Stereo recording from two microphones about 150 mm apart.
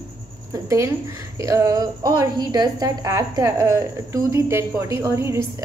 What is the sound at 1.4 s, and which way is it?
A woman's voice, 20° right (ahead or behind).